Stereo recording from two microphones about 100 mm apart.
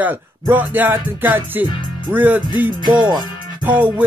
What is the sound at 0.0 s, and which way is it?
Music, 20° right (ahead or behind).